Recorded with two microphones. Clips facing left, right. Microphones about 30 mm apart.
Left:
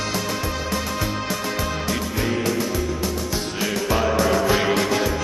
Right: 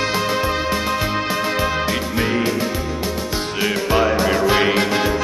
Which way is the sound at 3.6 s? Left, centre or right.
Right.